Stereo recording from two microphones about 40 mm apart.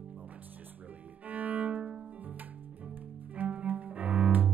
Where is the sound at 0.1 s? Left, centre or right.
Right.